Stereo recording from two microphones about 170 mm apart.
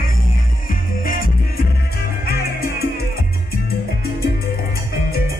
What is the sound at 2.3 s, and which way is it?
Music, 65° left (ahead or behind).